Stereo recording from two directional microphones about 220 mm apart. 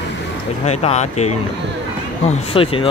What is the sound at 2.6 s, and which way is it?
Speech, 25° left (ahead or behind).